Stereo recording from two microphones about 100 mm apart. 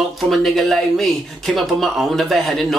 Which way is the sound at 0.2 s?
Centre (ahead or behind).